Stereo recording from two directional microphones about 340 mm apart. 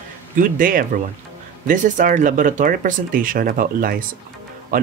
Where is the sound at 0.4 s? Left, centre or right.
Right.